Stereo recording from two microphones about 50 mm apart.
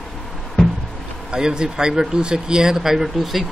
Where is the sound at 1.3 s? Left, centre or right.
Centre.